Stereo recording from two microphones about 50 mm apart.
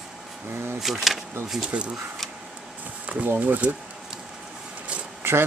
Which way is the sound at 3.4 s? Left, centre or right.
Right.